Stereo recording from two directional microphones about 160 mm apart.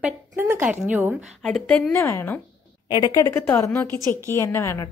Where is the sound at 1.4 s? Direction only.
5° left (ahead or behind).